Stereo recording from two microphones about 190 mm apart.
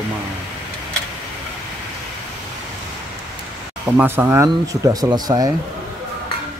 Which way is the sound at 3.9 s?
10° right (ahead or behind).